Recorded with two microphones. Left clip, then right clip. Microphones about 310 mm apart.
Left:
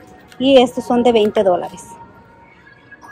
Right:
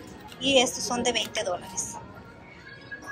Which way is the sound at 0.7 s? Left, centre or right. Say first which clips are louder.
Left 13 dB; centre.